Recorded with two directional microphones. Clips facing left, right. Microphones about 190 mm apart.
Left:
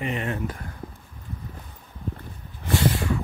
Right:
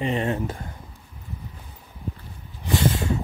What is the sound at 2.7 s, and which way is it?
Vehicle, 20° right (ahead or behind).